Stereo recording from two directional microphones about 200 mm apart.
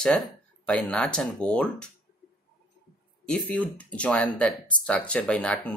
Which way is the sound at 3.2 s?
5° left (ahead or behind).